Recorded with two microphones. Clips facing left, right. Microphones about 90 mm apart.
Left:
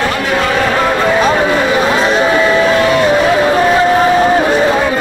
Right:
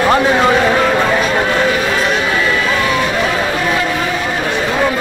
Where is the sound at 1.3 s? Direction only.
10° left (ahead or behind).